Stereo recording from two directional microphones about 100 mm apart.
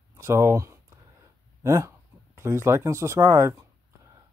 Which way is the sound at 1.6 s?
30° right (ahead or behind).